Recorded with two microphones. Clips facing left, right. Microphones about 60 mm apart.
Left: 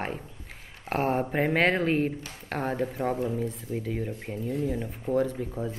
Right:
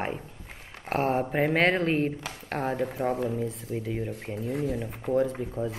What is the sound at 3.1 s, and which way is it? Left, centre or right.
Speech, right.